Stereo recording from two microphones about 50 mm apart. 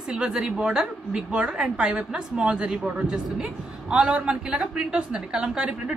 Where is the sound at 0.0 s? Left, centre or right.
Centre.